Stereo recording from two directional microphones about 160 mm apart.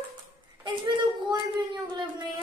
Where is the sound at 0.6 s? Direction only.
30° right (ahead or behind).